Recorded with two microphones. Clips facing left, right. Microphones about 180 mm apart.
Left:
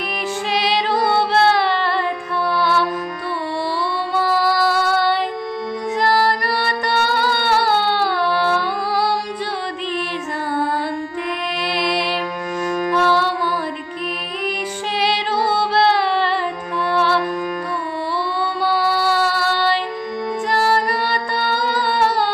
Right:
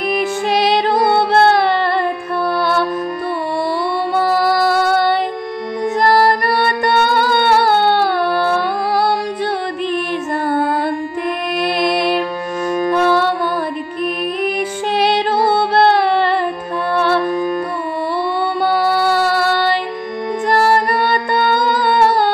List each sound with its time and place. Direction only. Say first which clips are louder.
0.5 s music: right 4 dB; 50° right (ahead or behind)
4.1 s female singing: right 3 dB; 50° right (ahead or behind)
5.9 s music: right 5 dB; 55° right (ahead or behind)
11.6 s music: right 6 dB; 50° right (ahead or behind)
12.6 s music: right 4 dB; 25° right (ahead or behind)
12.9 s music: right 3 dB; 55° right (ahead or behind)
15.0 s music: right 5 dB; 55° right (ahead or behind)
17.2 s music: right 5 dB; 25° right (ahead or behind)
18.4 s music: right 3 dB; 55° right (ahead or behind)